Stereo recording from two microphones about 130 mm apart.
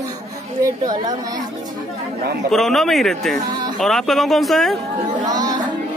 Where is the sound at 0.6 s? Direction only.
30° right (ahead or behind).